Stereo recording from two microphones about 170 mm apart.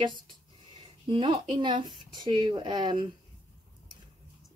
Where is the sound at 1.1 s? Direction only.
30° right (ahead or behind).